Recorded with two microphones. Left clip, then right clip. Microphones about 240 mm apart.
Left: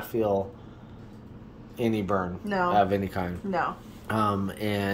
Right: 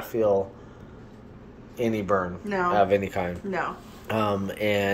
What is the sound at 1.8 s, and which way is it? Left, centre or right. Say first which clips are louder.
Speech: right 2 dB; left.